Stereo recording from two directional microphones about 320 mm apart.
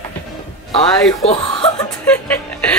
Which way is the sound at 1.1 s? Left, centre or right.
Centre.